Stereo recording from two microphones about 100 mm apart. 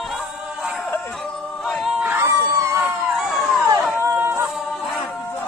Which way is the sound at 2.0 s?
25° right (ahead or behind).